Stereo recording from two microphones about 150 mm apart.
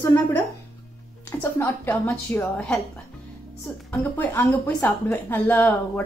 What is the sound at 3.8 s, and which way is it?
A woman's voice, 10° left (ahead or behind).